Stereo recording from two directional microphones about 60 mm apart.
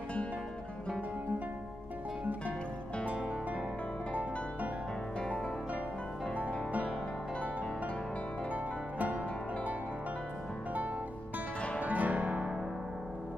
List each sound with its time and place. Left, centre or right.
4.1 s music: right
6.4 s music: right
8.5 s music: right
11.8 s music: right